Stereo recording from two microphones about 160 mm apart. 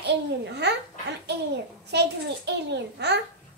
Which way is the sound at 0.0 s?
90° right.